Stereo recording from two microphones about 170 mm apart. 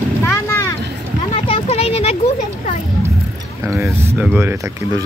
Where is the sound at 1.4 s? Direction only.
35° left (ahead or behind).